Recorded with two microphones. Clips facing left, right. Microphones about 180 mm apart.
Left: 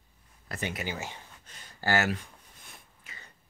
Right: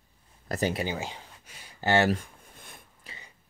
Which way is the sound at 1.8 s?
25° right (ahead or behind).